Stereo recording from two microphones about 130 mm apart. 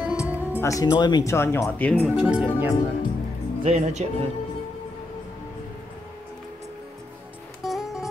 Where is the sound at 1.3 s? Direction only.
20° left (ahead or behind).